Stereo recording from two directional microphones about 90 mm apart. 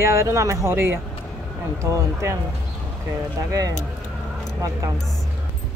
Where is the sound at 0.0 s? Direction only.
30° right (ahead or behind).